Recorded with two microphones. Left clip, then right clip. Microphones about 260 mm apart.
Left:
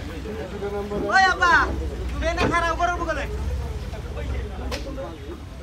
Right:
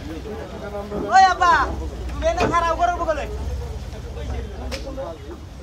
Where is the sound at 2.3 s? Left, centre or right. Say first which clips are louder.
Right 1 dB; right.